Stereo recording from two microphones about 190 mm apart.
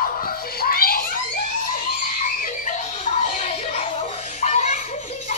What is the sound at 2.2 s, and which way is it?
Music, 40° left (ahead or behind).